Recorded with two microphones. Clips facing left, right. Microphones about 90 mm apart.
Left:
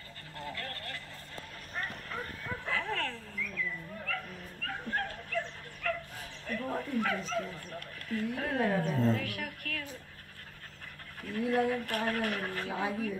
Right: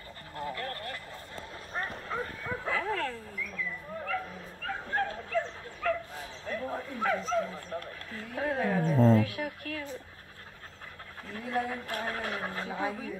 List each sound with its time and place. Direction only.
0.4 s a sound: 20° right (ahead or behind)
1.7 s bow-wow: 25° right (ahead or behind)
2.8 s wild animals: 15° right (ahead or behind)
4.0 s dog: 25° right (ahead or behind)
11.3 s speech: 25° right (ahead or behind)